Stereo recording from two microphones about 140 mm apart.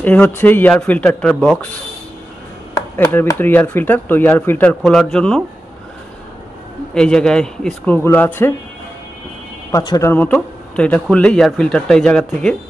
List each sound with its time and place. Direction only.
0.0 s speech: 10° left (ahead or behind)
3.1 s speech: 15° left (ahead or behind)
6.9 s speech: 5° left (ahead or behind)
9.7 s speech: 25° left (ahead or behind)
10.1 s speech: 10° left (ahead or behind)